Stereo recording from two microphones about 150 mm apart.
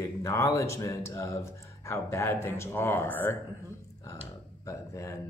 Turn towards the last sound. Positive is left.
turn(degrees=20)  # may be behind; listen again after turning